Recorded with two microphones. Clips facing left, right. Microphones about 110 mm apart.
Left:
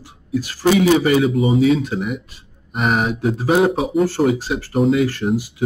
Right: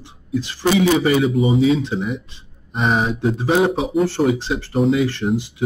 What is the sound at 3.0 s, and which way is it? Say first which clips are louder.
Speech: left 1 dB; 5° left (ahead or behind).